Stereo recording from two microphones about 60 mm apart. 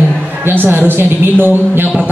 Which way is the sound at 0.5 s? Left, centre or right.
Right.